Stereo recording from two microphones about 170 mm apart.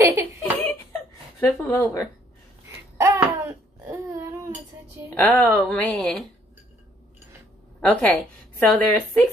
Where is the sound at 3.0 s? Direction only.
15° right (ahead or behind).